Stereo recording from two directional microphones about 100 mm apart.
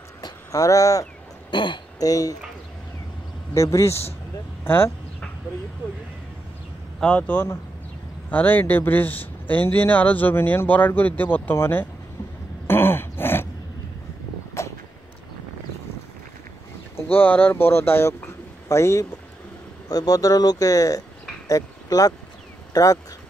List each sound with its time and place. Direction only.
0.2 s a sound: 35° left (ahead or behind)
1.5 s a sound: 50° left (ahead or behind)
2.0 s speech: 35° left (ahead or behind)
3.5 s speech: 30° left (ahead or behind)
4.6 s vehicle: 20° left (ahead or behind)
7.0 s a man's voice: 15° left (ahead or behind)
12.6 s groan: 20° left (ahead or behind)
14.6 s vehicle: 30° left (ahead or behind)
16.9 s a man's voice: 20° left (ahead or behind); by 22.9 s 35° left (ahead or behind)